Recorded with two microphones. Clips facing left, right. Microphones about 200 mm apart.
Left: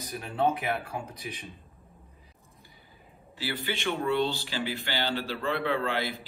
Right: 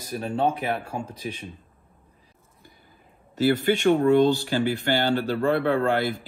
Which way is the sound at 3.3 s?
45° right (ahead or behind).